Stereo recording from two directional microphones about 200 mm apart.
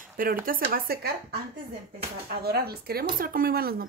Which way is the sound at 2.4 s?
50° right (ahead or behind).